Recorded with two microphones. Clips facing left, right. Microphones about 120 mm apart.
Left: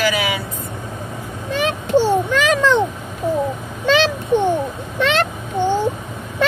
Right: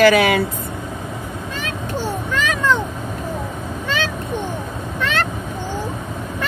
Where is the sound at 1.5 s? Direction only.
75° left (ahead or behind).